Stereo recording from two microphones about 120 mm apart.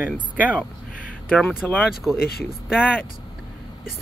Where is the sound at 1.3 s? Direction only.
15° left (ahead or behind).